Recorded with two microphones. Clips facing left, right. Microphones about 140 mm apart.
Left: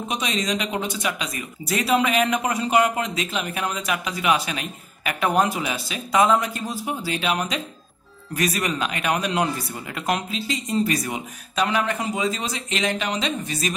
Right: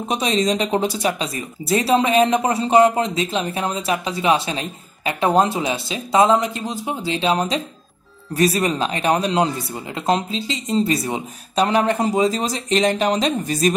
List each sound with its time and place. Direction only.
0.1 s speech: 35° right (ahead or behind)